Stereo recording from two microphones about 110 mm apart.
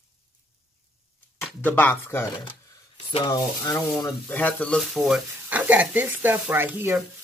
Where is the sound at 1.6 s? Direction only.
15° left (ahead or behind).